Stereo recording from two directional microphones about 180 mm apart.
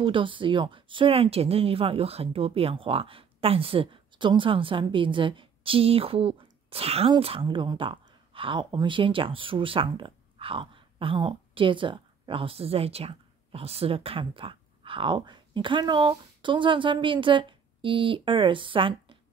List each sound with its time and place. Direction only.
0.0 s speech: 30° right (ahead or behind)